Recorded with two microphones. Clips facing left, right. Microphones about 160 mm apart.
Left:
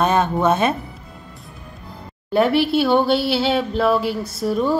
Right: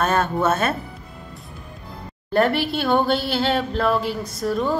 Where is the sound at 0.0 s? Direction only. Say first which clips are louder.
Left 3 dB; 10° left (ahead or behind).